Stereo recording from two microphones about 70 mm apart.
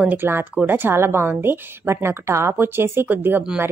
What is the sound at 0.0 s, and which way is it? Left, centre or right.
Speech, right.